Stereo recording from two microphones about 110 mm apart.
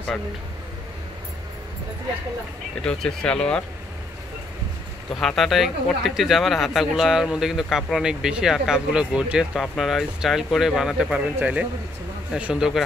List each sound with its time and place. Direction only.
2.8 s speech: 5° left (ahead or behind)
5.1 s a man's voice: centre (ahead or behind)